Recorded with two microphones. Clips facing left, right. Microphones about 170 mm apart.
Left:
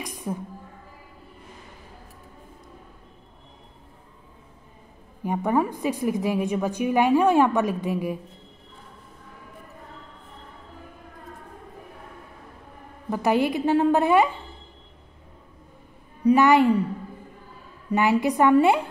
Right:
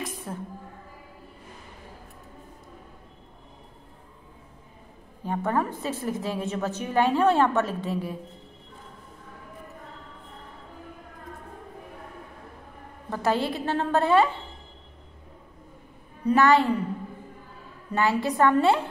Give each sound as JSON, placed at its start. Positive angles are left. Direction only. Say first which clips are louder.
{"t": 0.0, "sound": "music", "louder": "left 3 dB", "side_deg": 15}
{"t": 5.2, "sound": "a woman's voice", "louder": "left 3 dB", "side_deg": 15}
{"t": 13.1, "sound": "a woman's voice", "louder": "left 4 dB", "side_deg": 15}
{"t": 16.3, "sound": "a woman's voice", "louder": "left 3 dB", "side_deg": 15}
{"t": 17.9, "sound": "a woman's voice", "louder": "left 3 dB", "side_deg": 15}